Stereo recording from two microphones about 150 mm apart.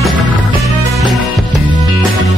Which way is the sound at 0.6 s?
Centre (ahead or behind).